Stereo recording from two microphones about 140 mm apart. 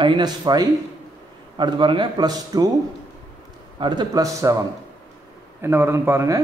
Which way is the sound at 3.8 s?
30° right (ahead or behind).